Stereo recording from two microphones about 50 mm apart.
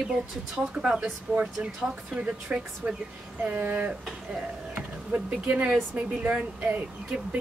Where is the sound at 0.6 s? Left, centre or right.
Centre.